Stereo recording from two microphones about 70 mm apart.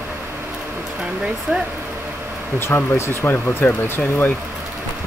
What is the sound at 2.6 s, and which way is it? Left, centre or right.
Speech, left.